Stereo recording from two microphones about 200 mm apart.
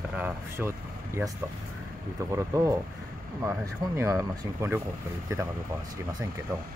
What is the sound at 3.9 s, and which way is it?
Speech, 15° right (ahead or behind).